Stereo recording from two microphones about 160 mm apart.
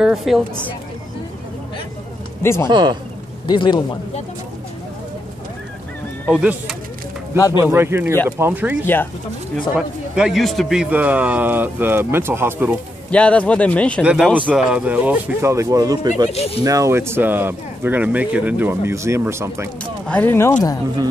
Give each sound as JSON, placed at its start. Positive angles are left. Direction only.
{"t": 0.0, "sound": "speech", "side_deg": 0}
{"t": 2.4, "sound": "speech", "side_deg": 15}
{"t": 2.7, "sound": "speech", "side_deg": -25}
{"t": 3.4, "sound": "a man's voice", "side_deg": 30}
{"t": 6.4, "sound": "speech", "side_deg": -10}
{"t": 13.1, "sound": "speech", "side_deg": 5}
{"t": 14.0, "sound": "speech", "side_deg": -5}
{"t": 16.3, "sound": "speech", "side_deg": 40}
{"t": 16.6, "sound": "speech", "side_deg": -20}
{"t": 20.1, "sound": "speech", "side_deg": 10}